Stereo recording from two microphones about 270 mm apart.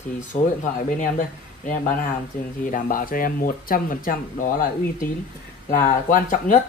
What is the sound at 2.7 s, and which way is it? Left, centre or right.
A woman's voice, left.